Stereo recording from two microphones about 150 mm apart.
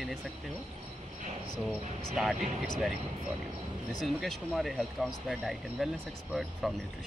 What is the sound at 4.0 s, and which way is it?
Speech, centre (ahead or behind).